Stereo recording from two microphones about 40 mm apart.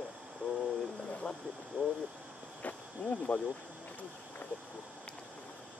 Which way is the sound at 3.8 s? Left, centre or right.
Left.